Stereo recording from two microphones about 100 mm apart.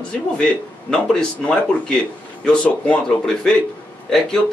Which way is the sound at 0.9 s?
5° left (ahead or behind).